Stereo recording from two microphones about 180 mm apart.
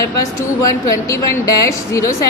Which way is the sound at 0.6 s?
20° left (ahead or behind).